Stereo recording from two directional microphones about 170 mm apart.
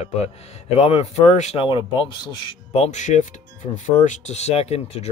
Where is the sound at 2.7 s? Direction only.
40° left (ahead or behind).